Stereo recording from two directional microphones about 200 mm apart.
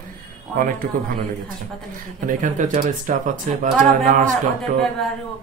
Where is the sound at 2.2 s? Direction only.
40° right (ahead or behind).